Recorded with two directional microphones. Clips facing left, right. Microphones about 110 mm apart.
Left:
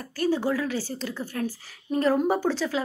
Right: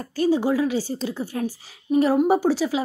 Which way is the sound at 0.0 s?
20° right (ahead or behind).